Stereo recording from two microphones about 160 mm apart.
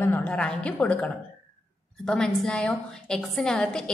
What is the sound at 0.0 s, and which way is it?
A woman's voice, 10° left (ahead or behind).